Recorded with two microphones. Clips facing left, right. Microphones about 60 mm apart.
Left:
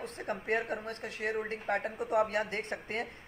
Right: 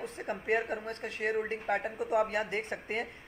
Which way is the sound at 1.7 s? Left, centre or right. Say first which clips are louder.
Right 1 dB; centre.